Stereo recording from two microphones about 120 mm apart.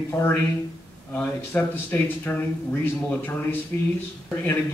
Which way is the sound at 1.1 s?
15° left (ahead or behind).